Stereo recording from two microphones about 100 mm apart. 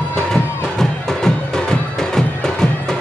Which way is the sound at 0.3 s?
5° left (ahead or behind).